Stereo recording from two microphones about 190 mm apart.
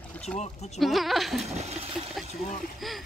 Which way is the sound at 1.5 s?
35° right (ahead or behind).